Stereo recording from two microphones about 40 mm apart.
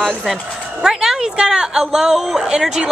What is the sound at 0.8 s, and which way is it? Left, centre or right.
A woman's voice, centre.